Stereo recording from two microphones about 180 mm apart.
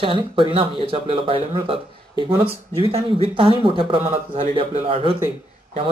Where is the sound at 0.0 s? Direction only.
30° right (ahead or behind).